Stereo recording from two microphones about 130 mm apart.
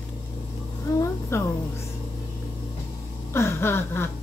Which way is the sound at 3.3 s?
20° left (ahead or behind).